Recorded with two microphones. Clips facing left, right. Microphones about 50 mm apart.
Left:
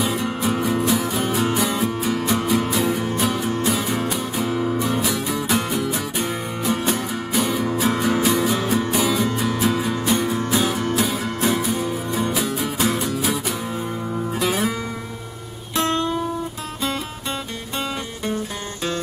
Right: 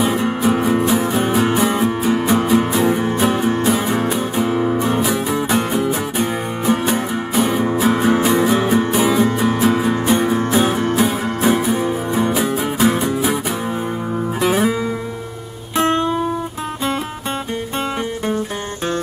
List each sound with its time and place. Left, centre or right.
0.0 s music: right